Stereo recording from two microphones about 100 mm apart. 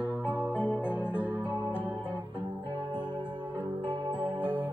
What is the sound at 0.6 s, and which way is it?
Music, 20° left (ahead or behind).